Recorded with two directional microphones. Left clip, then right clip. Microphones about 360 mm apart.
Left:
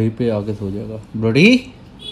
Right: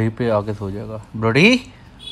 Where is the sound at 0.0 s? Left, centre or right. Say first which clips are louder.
Even; centre.